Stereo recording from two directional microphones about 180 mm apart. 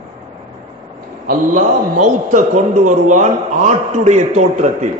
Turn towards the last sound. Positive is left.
turn(degrees=-40)  # may be behind; listen again after turning